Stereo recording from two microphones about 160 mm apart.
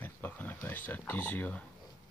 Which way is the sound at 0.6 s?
10° left (ahead or behind).